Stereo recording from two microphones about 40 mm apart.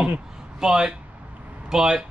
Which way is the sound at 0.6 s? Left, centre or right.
Centre.